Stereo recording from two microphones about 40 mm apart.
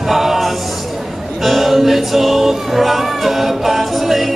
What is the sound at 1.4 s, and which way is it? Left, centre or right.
Music, centre.